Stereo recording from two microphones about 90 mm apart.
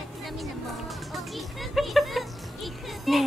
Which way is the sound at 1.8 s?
Centre (ahead or behind).